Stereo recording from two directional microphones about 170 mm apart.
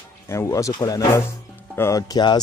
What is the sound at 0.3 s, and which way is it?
Speech, 15° left (ahead or behind).